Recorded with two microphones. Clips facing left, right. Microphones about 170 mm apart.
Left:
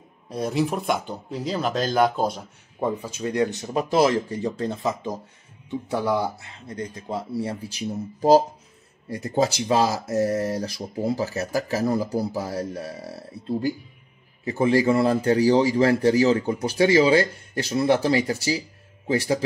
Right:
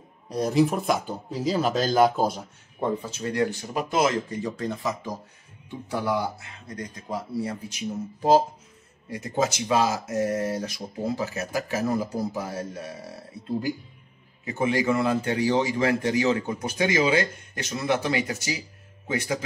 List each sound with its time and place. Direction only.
0.3 s speech: centre (ahead or behind)
2.8 s speech: 10° left (ahead or behind); by 19.4 s 35° left (ahead or behind)